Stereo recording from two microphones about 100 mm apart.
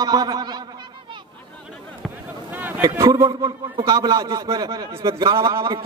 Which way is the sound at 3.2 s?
65° right (ahead or behind).